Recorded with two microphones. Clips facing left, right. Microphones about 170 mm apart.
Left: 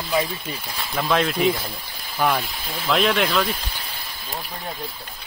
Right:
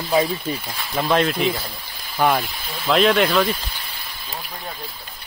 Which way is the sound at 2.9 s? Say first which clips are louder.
Right 4 dB; centre (ahead or behind).